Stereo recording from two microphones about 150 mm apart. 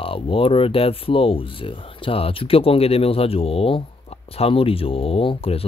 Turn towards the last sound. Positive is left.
turn(degrees=40)  # may be behind; listen again after turning